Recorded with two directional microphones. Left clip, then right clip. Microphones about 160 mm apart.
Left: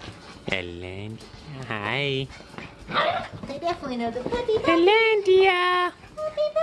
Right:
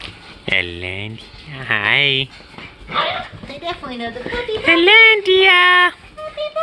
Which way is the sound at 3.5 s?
40° left (ahead or behind).